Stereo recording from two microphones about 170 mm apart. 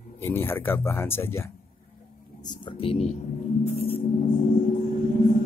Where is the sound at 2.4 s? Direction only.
25° left (ahead or behind).